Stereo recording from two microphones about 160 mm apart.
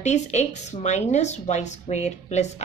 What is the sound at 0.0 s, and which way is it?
Speech, 45° left (ahead or behind).